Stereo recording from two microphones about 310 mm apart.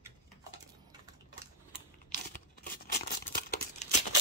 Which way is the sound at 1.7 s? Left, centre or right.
Left.